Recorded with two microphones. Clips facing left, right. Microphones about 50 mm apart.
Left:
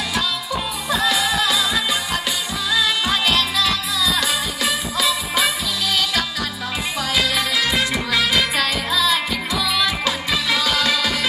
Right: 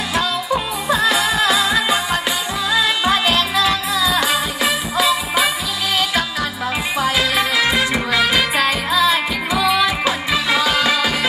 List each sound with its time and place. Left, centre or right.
0.8 s music: right; by 5.5 s centre
7.0 s music: right